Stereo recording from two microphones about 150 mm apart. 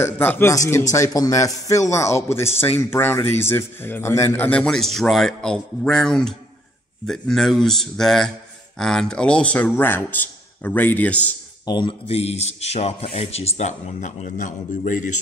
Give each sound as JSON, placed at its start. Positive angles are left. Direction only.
{"t": 0.0, "sound": "speech", "side_deg": 15}
{"t": 11.6, "sound": "speech", "side_deg": 30}
{"t": 12.1, "sound": "speech", "side_deg": 45}